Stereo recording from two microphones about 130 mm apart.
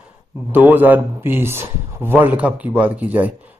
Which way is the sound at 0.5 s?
15° right (ahead or behind).